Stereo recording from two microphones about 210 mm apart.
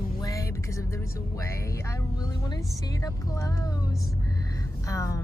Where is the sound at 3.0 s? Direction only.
15° left (ahead or behind).